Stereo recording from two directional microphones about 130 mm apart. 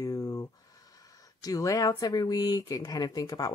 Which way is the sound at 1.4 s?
25° left (ahead or behind).